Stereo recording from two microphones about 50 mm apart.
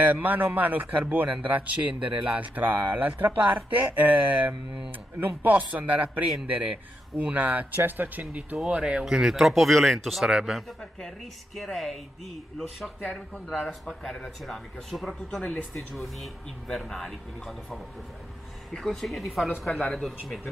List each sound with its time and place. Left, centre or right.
0.0 s speech: right
8.6 s speech: centre
9.0 s speech: centre
10.2 s speech: centre
10.8 s speech: centre
18.8 s speech: centre